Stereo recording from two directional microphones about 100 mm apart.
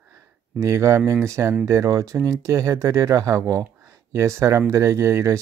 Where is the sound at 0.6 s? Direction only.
30° right (ahead or behind).